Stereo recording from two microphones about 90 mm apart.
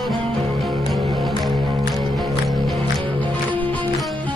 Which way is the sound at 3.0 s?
70° right (ahead or behind).